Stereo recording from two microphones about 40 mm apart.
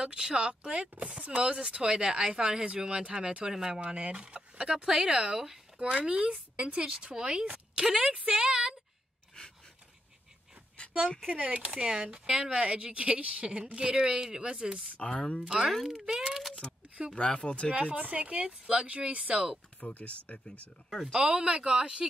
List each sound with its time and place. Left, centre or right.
0.0 s a child's voice: right
3.8 s speech: right
11.2 s speech: right
11.7 s speech: centre
15.0 s speech: left
15.4 s a child's voice: centre
15.7 s a child's voice: centre
16.1 s a child's voice: centre
16.6 s speech: left
17.7 s speech: right
19.8 s speech: left
21.1 s speech: right